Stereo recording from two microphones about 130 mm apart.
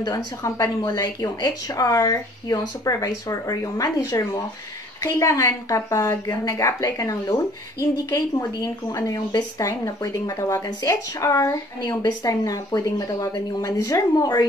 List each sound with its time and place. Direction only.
0.0 s speech: 25° left (ahead or behind)